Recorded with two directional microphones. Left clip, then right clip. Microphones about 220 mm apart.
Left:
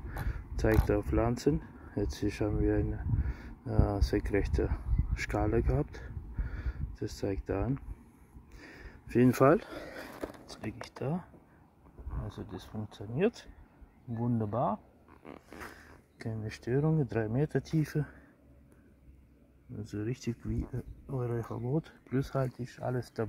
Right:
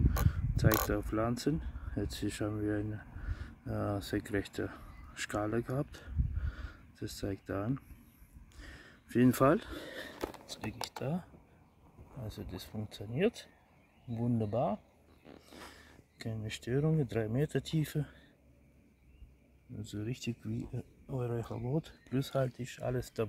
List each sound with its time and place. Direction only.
0.2 s mechanisms: centre (ahead or behind)
0.8 s speech: centre (ahead or behind)
8.5 s a sound: centre (ahead or behind)
10.6 s speech: 5° right (ahead or behind)
12.3 s speech: 10° right (ahead or behind)
14.4 s speech: 15° right (ahead or behind)
16.2 s speech: 10° right (ahead or behind)
20.0 s speech: centre (ahead or behind)
22.6 s speech: 20° right (ahead or behind)